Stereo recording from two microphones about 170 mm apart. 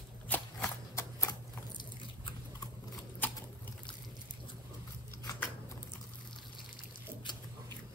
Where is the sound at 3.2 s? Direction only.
10° left (ahead or behind).